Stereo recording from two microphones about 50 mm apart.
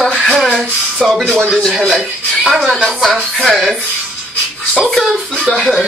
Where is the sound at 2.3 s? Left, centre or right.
Centre.